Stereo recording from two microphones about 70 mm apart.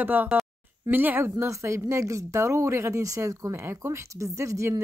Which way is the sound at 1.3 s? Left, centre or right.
Right.